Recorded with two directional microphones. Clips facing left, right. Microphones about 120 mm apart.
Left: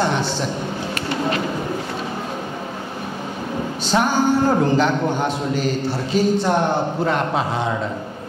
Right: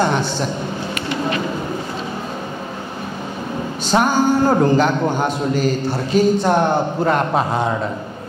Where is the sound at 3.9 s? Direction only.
45° right (ahead or behind).